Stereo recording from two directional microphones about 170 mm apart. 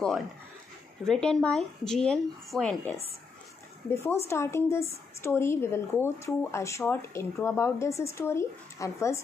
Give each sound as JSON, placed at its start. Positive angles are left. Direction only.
{"t": 1.0, "sound": "speech", "side_deg": 5}
{"t": 3.9, "sound": "speech", "side_deg": 15}